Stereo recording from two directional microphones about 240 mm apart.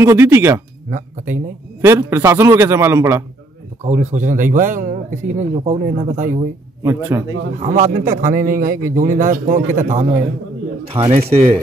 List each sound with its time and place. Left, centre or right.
0.0 s a man's voice: centre
3.8 s speech: right
6.8 s a man's voice: centre
7.6 s a man's voice: right